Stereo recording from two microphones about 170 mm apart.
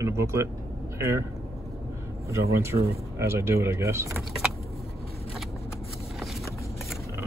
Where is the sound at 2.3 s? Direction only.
20° right (ahead or behind).